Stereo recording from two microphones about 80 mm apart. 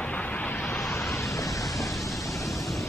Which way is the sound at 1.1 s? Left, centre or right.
Left.